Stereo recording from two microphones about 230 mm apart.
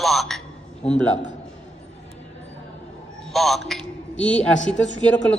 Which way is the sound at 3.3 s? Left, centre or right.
Centre.